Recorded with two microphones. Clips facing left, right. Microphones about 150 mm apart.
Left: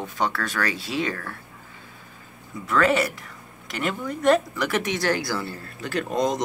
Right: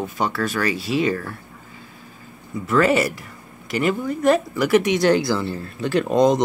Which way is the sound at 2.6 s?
5° right (ahead or behind).